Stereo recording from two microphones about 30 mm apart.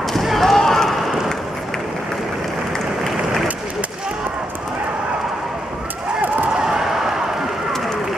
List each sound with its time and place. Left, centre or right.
0.0 s basketball bounce: centre
0.5 s run: centre
3.0 s applause: centre
6.6 s a sound: centre